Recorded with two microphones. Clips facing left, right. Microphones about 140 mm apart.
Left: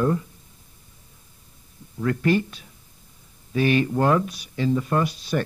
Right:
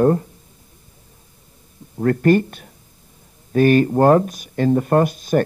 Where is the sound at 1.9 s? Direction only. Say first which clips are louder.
Right 6 dB; 50° right (ahead or behind).